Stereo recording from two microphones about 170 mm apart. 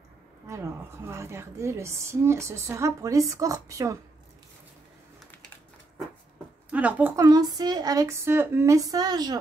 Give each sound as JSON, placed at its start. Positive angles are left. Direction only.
{"t": 0.5, "sound": "a woman's voice", "side_deg": -15}
{"t": 6.7, "sound": "speech", "side_deg": -10}
{"t": 7.2, "sound": "speech", "side_deg": -20}